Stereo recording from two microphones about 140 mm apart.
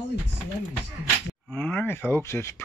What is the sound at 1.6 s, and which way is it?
Speech, 10° left (ahead or behind).